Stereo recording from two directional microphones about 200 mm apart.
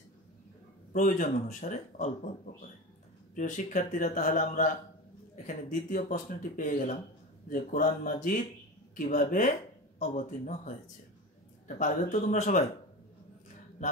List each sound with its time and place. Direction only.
0.9 s speech: 40° left (ahead or behind)
3.3 s speech: 40° left (ahead or behind)
13.8 s speech: 35° left (ahead or behind)